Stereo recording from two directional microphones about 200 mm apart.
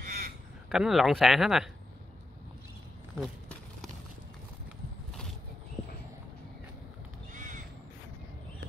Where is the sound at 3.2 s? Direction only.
Centre (ahead or behind).